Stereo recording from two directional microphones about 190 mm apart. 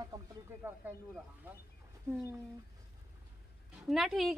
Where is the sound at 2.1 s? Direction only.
15° right (ahead or behind).